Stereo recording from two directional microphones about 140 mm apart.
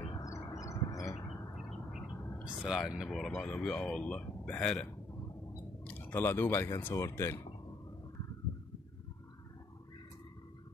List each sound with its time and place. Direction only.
0.2 s a sound: 25° left (ahead or behind)
1.5 s speech: 5° right (ahead or behind)
5.9 s speech: 15° left (ahead or behind)